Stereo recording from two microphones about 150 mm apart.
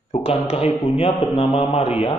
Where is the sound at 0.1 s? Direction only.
40° left (ahead or behind).